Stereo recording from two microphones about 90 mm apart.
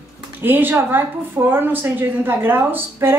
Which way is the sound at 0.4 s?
20° right (ahead or behind).